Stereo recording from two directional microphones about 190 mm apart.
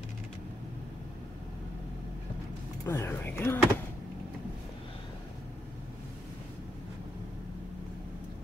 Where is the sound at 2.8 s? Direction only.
15° left (ahead or behind).